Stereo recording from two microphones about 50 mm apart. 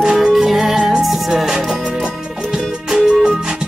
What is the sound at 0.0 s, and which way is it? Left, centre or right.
Music, centre.